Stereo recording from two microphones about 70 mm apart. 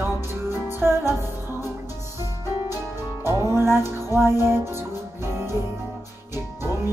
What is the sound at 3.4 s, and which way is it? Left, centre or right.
Music, right.